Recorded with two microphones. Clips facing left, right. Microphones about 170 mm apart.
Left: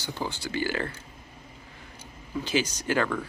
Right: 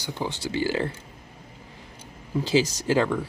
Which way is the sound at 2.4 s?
30° right (ahead or behind).